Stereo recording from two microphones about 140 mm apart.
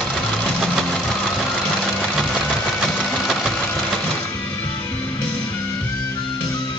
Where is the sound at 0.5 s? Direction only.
Centre (ahead or behind).